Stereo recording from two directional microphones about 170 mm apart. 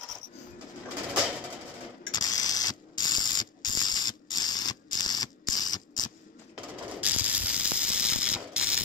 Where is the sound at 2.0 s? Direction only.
25° left (ahead or behind).